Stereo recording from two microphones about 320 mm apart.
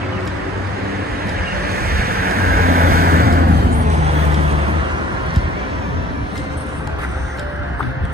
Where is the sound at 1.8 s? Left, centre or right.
Right.